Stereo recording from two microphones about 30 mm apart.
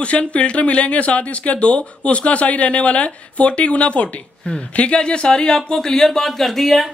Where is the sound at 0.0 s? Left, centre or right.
Left.